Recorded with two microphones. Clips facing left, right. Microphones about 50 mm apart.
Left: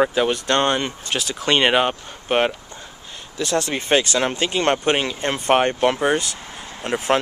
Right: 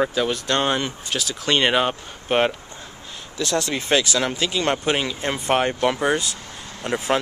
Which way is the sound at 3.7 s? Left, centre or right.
Left.